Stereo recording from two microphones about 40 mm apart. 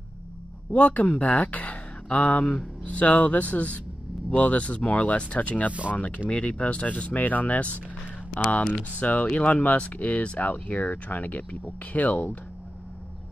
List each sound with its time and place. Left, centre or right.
0.7 s speech: left
5.7 s speech: right
5.9 s speech: left
8.9 s speech: left